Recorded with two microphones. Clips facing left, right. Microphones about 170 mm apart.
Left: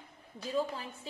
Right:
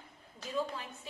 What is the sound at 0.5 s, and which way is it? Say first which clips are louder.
Speech: left 2 dB; 30° left (ahead or behind).